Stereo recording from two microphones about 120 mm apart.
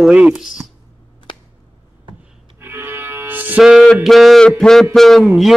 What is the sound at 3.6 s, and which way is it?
A man's voice, centre (ahead or behind).